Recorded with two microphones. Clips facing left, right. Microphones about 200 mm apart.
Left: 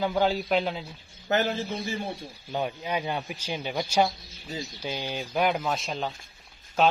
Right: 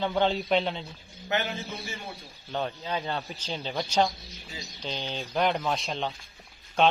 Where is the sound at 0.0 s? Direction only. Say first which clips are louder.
Left 1 dB; 5° left (ahead or behind).